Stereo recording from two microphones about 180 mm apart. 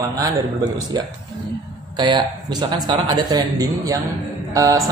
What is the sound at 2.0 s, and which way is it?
Speech, 25° right (ahead or behind).